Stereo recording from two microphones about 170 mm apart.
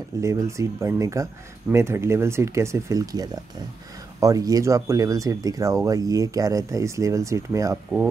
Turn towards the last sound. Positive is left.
turn(degrees=-20)  # may be behind; listen again after turning